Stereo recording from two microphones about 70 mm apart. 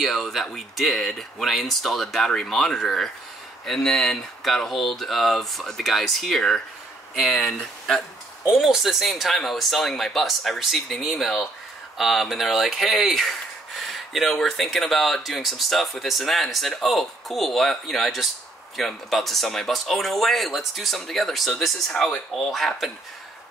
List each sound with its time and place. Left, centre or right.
0.0 s speech: centre